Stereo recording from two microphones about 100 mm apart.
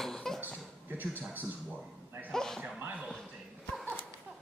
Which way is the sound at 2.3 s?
5° left (ahead or behind).